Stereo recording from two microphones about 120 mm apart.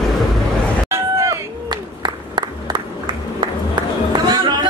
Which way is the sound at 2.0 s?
40° right (ahead or behind).